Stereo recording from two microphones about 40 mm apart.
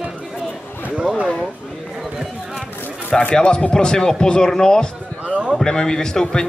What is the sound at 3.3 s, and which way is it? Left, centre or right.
Speech, left.